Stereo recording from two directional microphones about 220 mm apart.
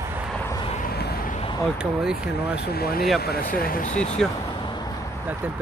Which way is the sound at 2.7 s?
45° left (ahead or behind).